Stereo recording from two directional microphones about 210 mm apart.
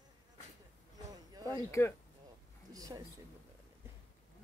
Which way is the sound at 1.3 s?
20° right (ahead or behind).